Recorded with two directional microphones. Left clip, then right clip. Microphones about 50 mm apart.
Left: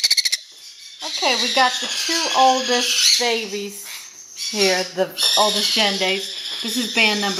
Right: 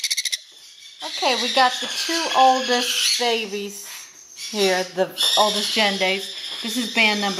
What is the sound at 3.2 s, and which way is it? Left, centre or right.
Squawk, centre.